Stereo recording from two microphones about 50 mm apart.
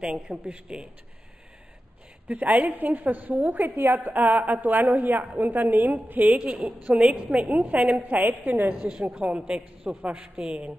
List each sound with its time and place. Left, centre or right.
0.0 s a woman's voice: centre
2.2 s a woman's voice: right
6.3 s a woman's voice: right